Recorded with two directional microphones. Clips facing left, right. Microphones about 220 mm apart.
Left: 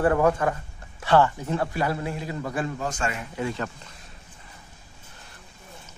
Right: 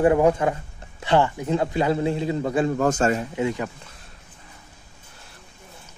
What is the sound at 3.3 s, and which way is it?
Speech, 15° right (ahead or behind).